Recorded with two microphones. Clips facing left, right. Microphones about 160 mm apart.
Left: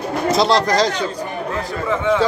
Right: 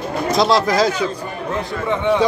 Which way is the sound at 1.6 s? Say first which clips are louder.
Right 1 dB; 20° right (ahead or behind).